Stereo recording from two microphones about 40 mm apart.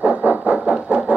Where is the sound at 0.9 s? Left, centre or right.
Right.